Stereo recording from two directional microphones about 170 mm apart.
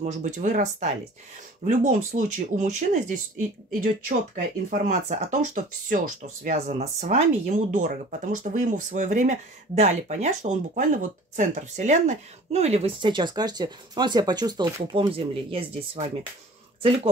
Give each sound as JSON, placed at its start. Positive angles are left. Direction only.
{"t": 0.0, "sound": "speech", "side_deg": -45}